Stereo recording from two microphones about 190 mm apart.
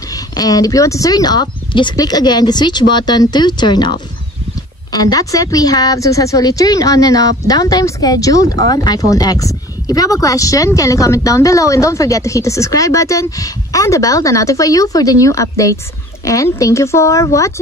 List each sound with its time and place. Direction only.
0.1 s a woman's voice: 20° left (ahead or behind)